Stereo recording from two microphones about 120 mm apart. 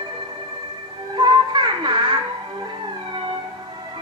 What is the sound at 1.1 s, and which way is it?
Music, 40° right (ahead or behind).